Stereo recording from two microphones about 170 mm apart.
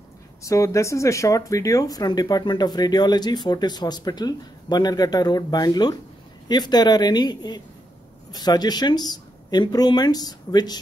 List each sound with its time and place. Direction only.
0.4 s speech: 20° left (ahead or behind)